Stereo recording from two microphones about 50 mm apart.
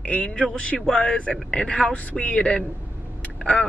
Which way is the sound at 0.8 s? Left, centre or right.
Centre.